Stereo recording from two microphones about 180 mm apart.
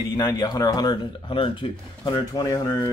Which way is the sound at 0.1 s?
20° left (ahead or behind).